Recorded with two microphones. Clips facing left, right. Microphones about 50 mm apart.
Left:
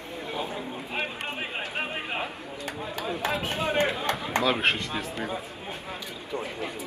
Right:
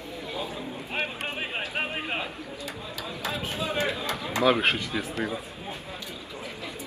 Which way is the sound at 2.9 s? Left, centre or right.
Left.